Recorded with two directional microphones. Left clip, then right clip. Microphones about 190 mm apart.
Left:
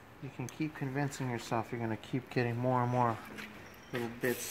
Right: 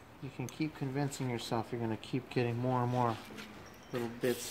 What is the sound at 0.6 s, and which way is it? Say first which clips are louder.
Speech: even; 5° left (ahead or behind).